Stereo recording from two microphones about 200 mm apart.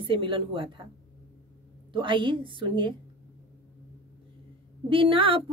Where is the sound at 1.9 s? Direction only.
25° right (ahead or behind).